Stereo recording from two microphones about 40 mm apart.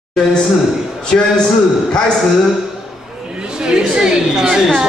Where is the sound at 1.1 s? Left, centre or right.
Centre.